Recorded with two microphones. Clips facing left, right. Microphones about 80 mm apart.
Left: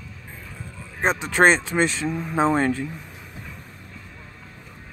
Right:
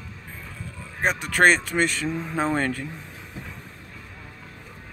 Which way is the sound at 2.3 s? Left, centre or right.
Centre.